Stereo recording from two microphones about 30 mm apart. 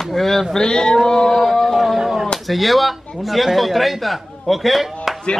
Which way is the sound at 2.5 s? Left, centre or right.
Centre.